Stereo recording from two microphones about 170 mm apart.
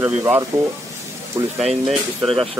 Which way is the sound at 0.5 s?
15° right (ahead or behind).